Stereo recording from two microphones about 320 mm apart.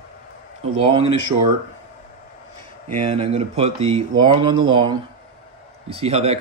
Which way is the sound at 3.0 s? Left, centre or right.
Centre.